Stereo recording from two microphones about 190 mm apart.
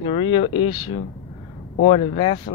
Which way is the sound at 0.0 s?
30° left (ahead or behind).